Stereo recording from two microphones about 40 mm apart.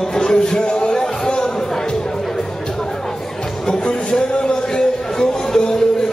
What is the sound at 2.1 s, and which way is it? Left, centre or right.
Music, centre.